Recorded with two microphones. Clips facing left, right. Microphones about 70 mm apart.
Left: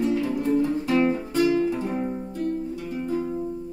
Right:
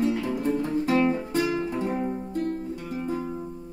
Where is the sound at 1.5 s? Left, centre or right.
Right.